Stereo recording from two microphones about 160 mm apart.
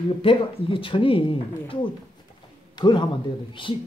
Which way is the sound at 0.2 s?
35° left (ahead or behind).